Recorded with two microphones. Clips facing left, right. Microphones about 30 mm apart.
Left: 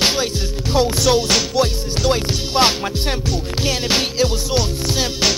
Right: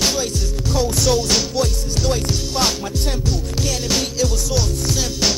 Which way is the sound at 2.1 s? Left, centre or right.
Left.